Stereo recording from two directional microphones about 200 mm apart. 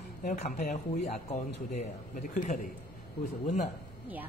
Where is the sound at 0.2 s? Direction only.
40° left (ahead or behind).